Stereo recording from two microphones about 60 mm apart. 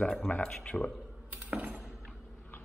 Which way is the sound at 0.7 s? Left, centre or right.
Left.